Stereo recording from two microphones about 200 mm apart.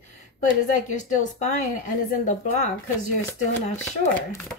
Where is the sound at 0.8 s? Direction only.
40° left (ahead or behind).